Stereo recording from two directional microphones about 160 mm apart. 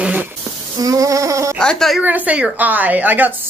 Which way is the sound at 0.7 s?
20° right (ahead or behind).